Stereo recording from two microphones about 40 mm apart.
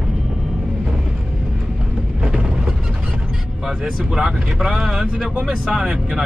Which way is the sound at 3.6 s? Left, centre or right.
Centre.